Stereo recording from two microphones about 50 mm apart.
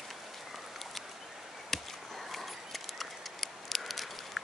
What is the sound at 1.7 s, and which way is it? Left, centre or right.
Chop, centre.